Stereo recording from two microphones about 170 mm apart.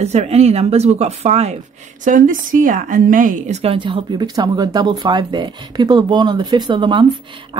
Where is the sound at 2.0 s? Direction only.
50° right (ahead or behind).